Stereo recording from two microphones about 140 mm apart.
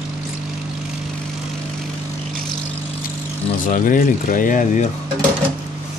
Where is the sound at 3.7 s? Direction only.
75° left (ahead or behind).